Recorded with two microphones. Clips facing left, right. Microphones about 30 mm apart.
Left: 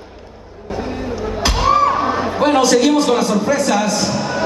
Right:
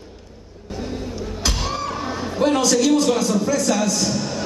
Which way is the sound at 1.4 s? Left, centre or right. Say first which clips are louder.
Left 12 dB; left.